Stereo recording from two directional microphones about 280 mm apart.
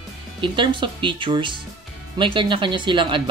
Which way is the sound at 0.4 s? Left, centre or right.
Centre.